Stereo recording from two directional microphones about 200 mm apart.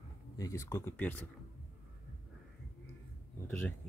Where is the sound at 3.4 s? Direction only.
10° left (ahead or behind).